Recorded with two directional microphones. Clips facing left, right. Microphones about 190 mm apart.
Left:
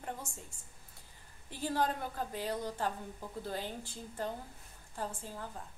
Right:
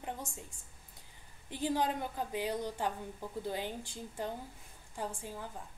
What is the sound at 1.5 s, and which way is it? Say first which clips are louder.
A woman's voice: right 1 dB; 15° right (ahead or behind).